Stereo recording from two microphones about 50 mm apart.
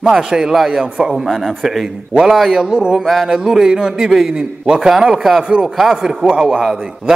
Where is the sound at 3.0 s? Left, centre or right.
Centre.